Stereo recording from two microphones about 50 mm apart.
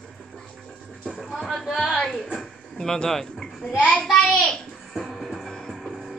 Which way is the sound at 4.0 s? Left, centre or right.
Centre.